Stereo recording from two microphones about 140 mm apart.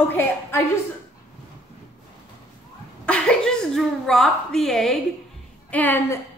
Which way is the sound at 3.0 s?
5° left (ahead or behind).